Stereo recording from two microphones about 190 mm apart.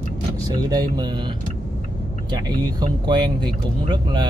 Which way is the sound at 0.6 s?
20° right (ahead or behind).